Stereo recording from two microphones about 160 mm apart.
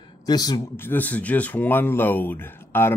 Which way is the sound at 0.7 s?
10° left (ahead or behind).